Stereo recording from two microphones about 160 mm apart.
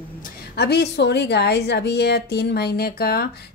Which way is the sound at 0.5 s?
90° left.